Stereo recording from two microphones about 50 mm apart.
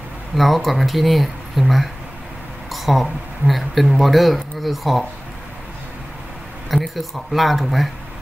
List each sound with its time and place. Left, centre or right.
0.4 s speech: centre
6.7 s speech: centre